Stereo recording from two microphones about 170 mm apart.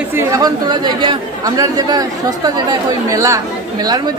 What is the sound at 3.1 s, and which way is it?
Speech, 20° right (ahead or behind).